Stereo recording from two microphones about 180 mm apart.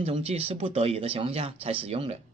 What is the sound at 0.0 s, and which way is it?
Speech, 35° right (ahead or behind).